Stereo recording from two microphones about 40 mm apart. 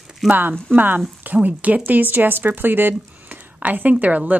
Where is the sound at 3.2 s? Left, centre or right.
Right.